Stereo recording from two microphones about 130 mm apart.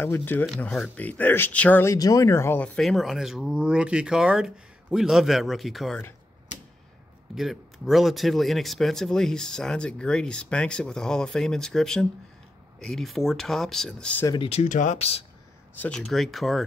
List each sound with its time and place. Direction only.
0.0 s speech: 15° left (ahead or behind); by 5.9 s centre (ahead or behind)
7.3 s speech: centre (ahead or behind)
14.2 s speech: 35° left (ahead or behind)
14.5 s speech: 70° left (ahead or behind)
15.7 s speech: 10° left (ahead or behind)